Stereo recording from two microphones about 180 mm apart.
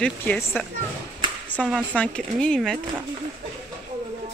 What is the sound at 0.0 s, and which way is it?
Speech, 10° left (ahead or behind).